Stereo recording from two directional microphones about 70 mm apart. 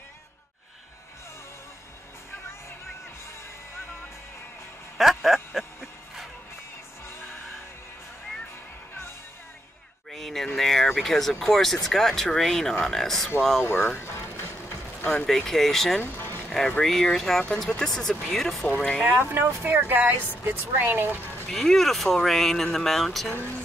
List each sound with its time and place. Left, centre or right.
4.9 s music: centre
10.1 s speech: centre
13.7 s a sound: left
15.2 s speech: centre
16.0 s music: left
16.8 s speech: centre
19.2 s speech: right
21.5 s speech: centre
23.3 s speech: left